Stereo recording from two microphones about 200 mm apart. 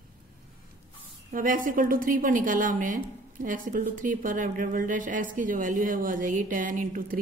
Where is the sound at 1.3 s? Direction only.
40° right (ahead or behind).